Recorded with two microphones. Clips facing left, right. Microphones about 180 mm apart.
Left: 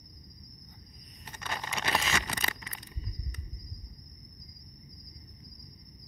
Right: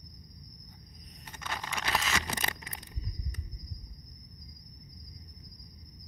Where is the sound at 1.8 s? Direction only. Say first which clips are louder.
Left 2 dB; 15° left (ahead or behind).